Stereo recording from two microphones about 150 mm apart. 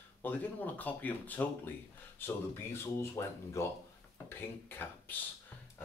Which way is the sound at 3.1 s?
20° left (ahead or behind).